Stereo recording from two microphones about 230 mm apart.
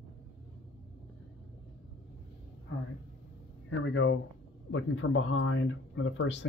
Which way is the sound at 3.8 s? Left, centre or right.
Left.